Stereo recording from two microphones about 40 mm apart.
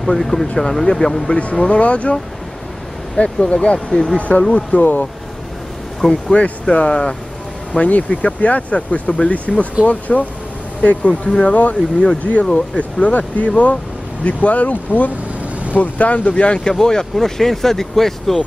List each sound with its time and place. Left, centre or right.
0.0 s speech: centre
1.3 s speech: left
3.2 s speech: left
4.5 s speech: left
6.0 s speech: left
14.2 s speech: left
16.7 s speech: centre